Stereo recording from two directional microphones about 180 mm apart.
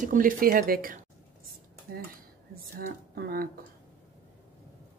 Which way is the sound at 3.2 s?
55° right (ahead or behind).